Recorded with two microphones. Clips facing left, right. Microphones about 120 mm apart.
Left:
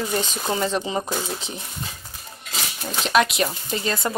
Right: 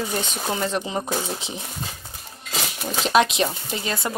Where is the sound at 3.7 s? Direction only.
15° right (ahead or behind).